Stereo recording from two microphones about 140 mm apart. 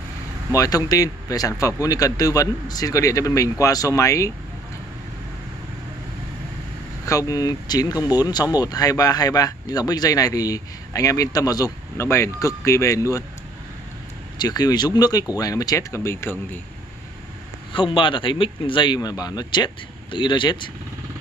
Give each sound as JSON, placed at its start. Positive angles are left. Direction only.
{"t": 0.6, "sound": "speech", "side_deg": 25}
{"t": 7.1, "sound": "speech", "side_deg": 25}
{"t": 14.4, "sound": "speech", "side_deg": 30}
{"t": 17.7, "sound": "speech", "side_deg": 35}